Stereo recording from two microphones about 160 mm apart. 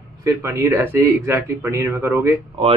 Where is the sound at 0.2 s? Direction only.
15° right (ahead or behind).